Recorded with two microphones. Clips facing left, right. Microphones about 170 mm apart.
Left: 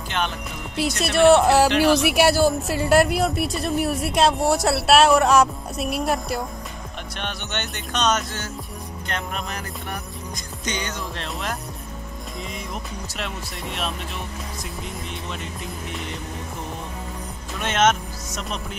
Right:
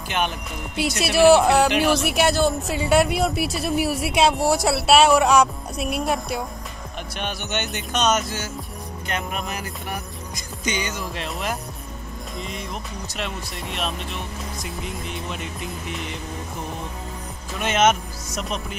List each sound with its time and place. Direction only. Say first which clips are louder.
0.7 s speech: right 1 dB; 5° right (ahead or behind)
1.7 s music: left 2 dB; 15° right (ahead or behind)
2.1 s speech: left 2 dB; 10° left (ahead or behind)
9.0 s music: right 2 dB; 10° right (ahead or behind)
10.6 s speech: right 2 dB; 5° right (ahead or behind)
14.6 s speech: right 2 dB; centre (ahead or behind)
17.6 s speech: right 1 dB; 5° right (ahead or behind)